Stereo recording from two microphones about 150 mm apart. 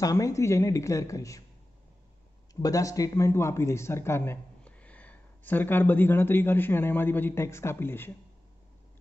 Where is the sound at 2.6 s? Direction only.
20° left (ahead or behind).